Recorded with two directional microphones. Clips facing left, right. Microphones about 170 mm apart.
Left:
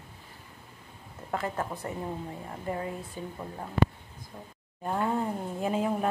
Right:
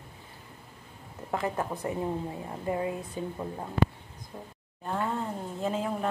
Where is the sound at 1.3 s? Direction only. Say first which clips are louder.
Right 2 dB; 20° right (ahead or behind).